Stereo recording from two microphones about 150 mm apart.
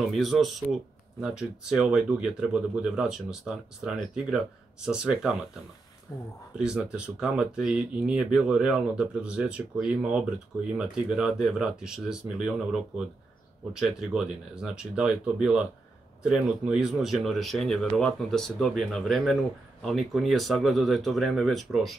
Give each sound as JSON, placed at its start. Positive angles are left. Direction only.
{"t": 0.1, "sound": "speech", "side_deg": 0}
{"t": 6.1, "sound": "speech", "side_deg": 15}
{"t": 6.6, "sound": "speech", "side_deg": -5}